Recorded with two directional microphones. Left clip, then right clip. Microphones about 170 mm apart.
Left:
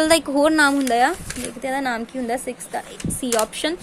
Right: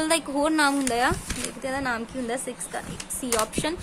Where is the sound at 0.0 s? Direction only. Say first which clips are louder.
Left 7 dB; 30° left (ahead or behind).